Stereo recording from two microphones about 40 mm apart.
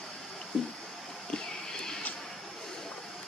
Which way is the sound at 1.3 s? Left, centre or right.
Centre.